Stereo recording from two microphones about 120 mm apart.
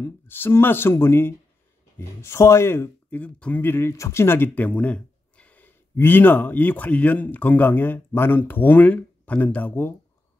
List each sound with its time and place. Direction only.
0.0 s speech: 20° left (ahead or behind)